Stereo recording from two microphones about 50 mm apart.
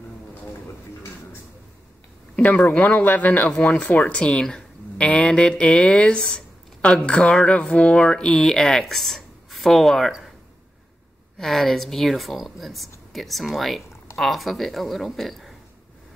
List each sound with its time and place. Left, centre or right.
2.3 s a sound: left
2.7 s speech: left
3.5 s speech: centre
11.3 s a woman's voice: centre